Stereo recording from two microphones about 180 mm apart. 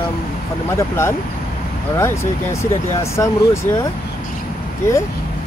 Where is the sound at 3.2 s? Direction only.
15° left (ahead or behind).